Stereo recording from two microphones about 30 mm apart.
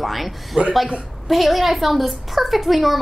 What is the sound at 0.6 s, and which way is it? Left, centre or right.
Speech, right.